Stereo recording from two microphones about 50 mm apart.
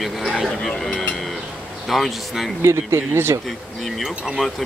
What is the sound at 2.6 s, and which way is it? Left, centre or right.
Speech, right.